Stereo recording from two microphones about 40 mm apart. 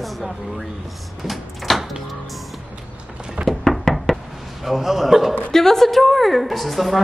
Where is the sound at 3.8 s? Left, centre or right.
Centre.